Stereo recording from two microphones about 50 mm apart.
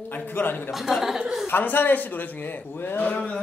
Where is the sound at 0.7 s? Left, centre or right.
Centre.